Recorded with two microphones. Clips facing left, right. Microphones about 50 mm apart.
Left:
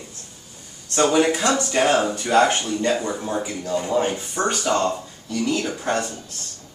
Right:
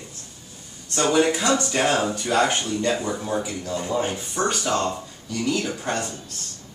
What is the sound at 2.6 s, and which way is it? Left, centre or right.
Speech, left.